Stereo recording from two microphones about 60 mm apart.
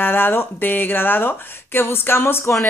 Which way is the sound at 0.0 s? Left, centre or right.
Left.